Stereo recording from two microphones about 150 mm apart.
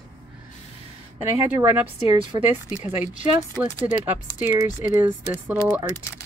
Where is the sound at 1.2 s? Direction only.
15° right (ahead or behind).